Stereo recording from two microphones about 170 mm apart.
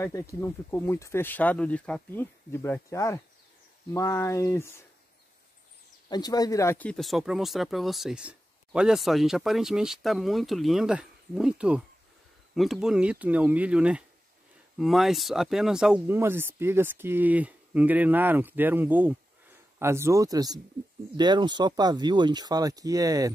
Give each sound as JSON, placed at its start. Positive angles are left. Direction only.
{"t": 0.0, "sound": "speech", "side_deg": 15}
{"t": 6.0, "sound": "speech", "side_deg": 25}